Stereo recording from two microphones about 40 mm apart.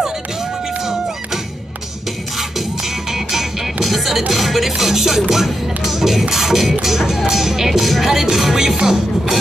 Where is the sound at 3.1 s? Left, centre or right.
Centre.